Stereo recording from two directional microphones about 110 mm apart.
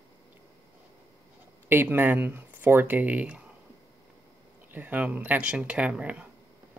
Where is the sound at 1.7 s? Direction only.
20° right (ahead or behind).